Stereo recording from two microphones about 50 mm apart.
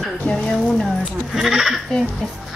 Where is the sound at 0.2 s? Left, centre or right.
Centre.